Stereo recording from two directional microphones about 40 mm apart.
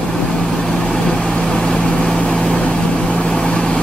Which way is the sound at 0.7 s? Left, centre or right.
Centre.